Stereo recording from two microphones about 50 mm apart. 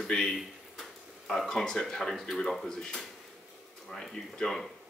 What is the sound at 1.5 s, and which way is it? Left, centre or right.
Speech, centre.